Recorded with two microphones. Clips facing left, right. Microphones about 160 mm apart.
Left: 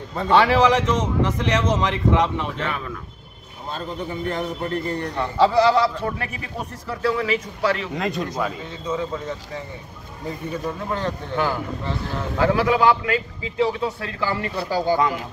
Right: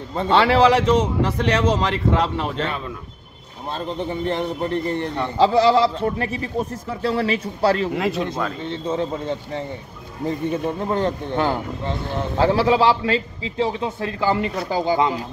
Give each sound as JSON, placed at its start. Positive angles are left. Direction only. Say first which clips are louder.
{"t": 0.1, "sound": "a man's voice", "louder": "even", "side_deg": -25}
{"t": 3.7, "sound": "a man's voice", "louder": "right 3 dB", "side_deg": -25}
{"t": 7.9, "sound": "speech", "louder": "right 3 dB", "side_deg": -5}
{"t": 8.6, "sound": "a man's voice", "louder": "right 3 dB", "side_deg": -30}